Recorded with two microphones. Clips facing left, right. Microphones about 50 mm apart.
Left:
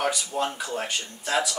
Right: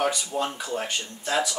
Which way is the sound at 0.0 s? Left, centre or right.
Centre.